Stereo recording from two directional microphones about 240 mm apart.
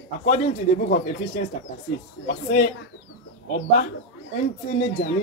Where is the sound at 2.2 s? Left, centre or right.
Left.